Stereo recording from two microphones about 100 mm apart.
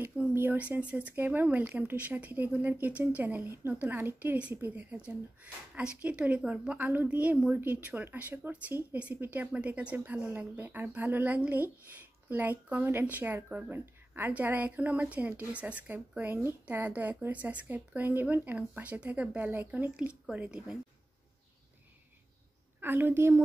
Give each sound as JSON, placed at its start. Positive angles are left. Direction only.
{"t": 0.3, "sound": "speech", "side_deg": -20}
{"t": 22.8, "sound": "a woman's voice", "side_deg": -20}